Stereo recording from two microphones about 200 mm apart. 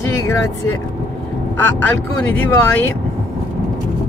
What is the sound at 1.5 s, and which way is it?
Speech, 10° left (ahead or behind).